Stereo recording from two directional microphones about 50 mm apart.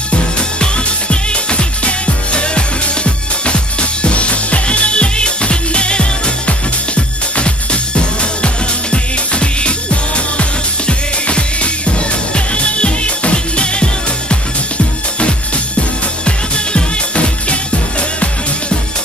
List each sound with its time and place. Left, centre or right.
0.6 s music: left
16.3 s music: left